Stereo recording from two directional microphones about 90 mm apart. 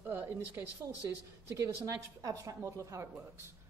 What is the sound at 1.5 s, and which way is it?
A woman's voice, 35° right (ahead or behind).